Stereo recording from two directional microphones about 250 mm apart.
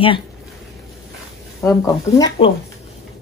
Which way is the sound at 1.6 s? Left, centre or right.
Centre.